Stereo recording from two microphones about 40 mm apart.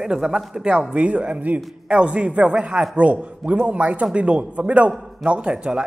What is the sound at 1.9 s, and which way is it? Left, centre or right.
A man's voice, right.